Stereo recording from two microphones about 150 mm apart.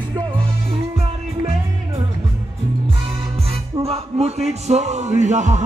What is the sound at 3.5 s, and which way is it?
Music, 40° right (ahead or behind).